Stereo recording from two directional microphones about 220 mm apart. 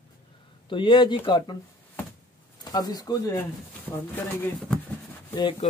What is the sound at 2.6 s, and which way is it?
Speech, 15° left (ahead or behind).